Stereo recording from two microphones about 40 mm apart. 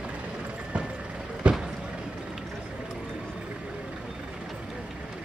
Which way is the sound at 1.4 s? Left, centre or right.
Right.